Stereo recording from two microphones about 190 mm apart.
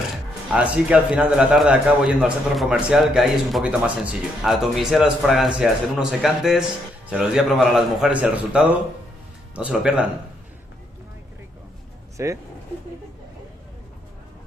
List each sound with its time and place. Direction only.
0.5 s a man's voice: 5° right (ahead or behind)
12.2 s speech: 15° right (ahead or behind)